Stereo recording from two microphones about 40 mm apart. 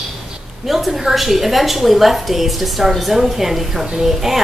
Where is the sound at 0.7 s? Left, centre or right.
Centre.